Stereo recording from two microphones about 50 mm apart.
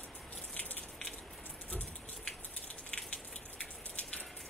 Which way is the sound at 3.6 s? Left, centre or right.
Left.